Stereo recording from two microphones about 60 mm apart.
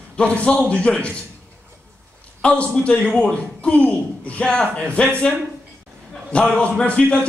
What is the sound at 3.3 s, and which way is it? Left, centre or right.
A man's voice, centre.